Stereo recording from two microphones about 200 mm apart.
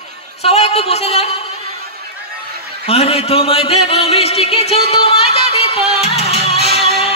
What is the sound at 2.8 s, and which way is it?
A man's voice, 30° left (ahead or behind).